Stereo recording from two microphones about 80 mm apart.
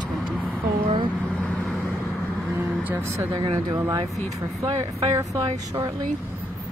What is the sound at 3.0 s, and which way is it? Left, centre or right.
Speech, right.